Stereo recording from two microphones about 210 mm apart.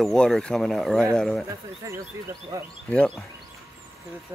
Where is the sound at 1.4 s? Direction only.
15° right (ahead or behind).